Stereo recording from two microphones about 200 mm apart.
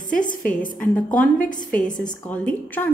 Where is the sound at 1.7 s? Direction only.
5° left (ahead or behind).